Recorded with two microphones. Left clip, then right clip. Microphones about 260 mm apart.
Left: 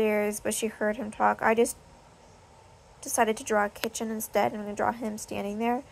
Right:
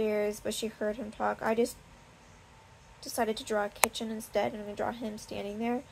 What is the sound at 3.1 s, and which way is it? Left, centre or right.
A woman's voice, left.